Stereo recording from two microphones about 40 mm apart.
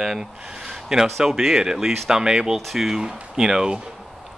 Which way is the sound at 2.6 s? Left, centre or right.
Centre.